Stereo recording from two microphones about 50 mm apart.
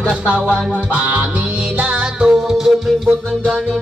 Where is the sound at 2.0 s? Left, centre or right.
Centre.